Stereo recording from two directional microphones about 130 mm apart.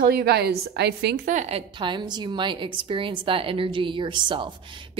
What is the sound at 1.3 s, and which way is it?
A woman's voice, 60° right (ahead or behind).